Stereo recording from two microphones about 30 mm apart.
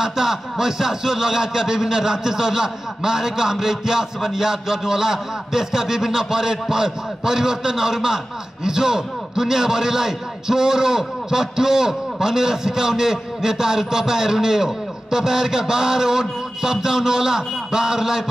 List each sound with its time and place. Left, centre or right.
0.0 s a man's voice: centre